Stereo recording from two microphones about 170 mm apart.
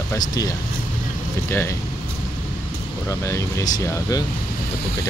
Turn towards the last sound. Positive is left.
turn(degrees=20)  # may be behind; listen again after turning